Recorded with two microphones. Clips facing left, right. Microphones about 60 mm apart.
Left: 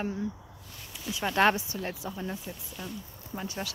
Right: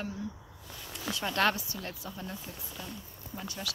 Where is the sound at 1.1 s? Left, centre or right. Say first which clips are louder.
Left 5 dB; centre.